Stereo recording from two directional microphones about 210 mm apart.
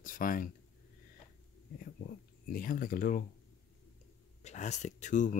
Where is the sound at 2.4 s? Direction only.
40° left (ahead or behind).